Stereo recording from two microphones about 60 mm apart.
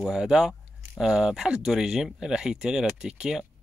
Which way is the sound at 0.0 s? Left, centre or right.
Centre.